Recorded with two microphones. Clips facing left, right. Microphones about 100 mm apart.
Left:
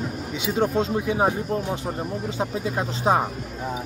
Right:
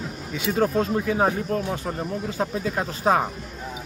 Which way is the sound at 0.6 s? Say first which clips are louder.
Even; 20° left (ahead or behind).